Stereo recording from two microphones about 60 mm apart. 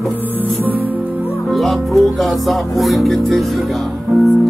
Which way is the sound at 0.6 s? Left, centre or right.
Right.